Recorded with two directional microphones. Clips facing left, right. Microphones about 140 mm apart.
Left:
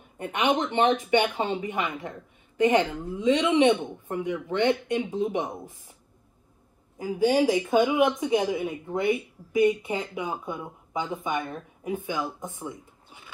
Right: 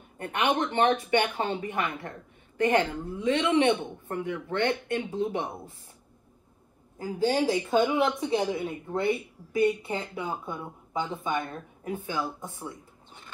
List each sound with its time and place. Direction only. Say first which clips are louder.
0.2 s speech: left 2 dB; 15° left (ahead or behind)
7.0 s speech: left 3 dB; 15° left (ahead or behind)